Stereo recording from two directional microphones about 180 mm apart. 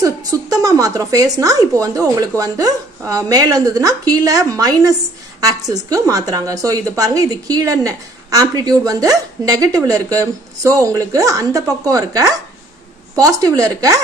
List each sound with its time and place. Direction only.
0.0 s a woman's voice: 20° right (ahead or behind)